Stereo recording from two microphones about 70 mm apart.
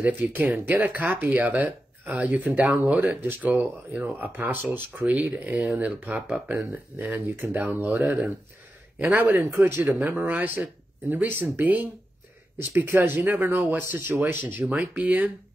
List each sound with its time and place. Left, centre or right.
0.0 s speech: right
5.0 s speech: centre; by 9.9 s right
9.9 s speech: right